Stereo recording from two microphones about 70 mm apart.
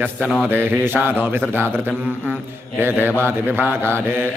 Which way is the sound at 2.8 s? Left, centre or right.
Right.